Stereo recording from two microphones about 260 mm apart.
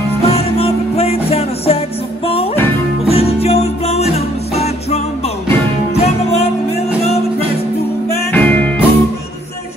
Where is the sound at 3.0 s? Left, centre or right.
Left.